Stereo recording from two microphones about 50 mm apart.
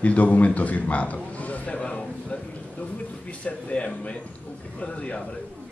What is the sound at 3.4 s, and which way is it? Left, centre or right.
Speech, left.